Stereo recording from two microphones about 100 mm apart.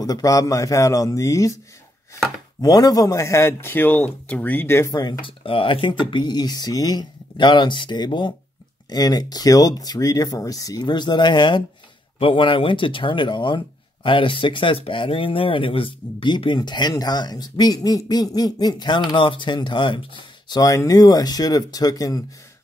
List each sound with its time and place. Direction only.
0.0 s speech: 35° left (ahead or behind)
2.6 s a man's voice: 40° left (ahead or behind)
4.9 s speech: 45° left (ahead or behind)
5.4 s speech: 65° left (ahead or behind); by 22.2 s 40° left (ahead or behind)